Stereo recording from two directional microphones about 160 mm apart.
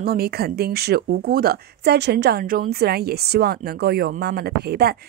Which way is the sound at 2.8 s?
75° right (ahead or behind).